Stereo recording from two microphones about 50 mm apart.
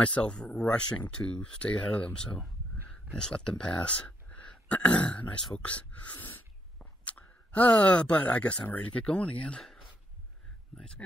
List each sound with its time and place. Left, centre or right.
0.0 s speech: left
6.1 s sneeze: left
6.8 s speech: left
9.6 s a sound: centre